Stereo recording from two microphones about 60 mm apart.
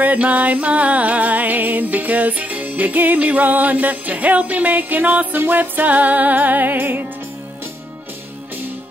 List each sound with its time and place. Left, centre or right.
0.0 s music: right